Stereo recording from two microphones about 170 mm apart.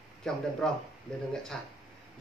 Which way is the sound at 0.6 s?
5° left (ahead or behind).